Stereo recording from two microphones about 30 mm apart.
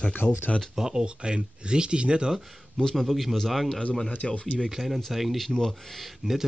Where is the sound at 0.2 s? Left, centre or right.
Left.